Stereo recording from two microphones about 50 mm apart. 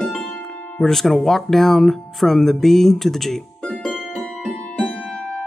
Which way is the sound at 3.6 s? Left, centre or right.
Centre.